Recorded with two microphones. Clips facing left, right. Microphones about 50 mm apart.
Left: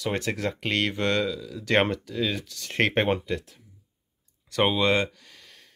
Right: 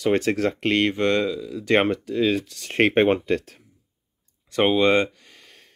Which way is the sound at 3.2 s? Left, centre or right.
Right.